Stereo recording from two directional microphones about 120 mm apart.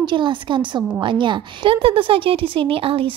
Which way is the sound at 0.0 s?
40° right (ahead or behind).